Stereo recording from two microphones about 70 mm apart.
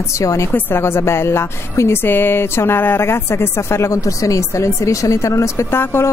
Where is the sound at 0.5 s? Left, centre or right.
Left.